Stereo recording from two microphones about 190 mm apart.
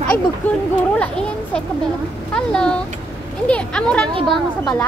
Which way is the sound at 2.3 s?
5° left (ahead or behind).